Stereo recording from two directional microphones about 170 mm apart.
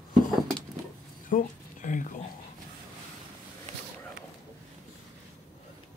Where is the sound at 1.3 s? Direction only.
50° left (ahead or behind).